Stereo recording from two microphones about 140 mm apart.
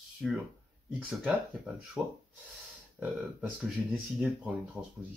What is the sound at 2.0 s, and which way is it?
Speech, 5° right (ahead or behind).